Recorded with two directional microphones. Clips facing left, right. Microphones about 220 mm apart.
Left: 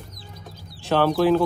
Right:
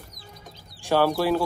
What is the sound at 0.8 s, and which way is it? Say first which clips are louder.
Speech: left 2 dB; 10° right (ahead or behind).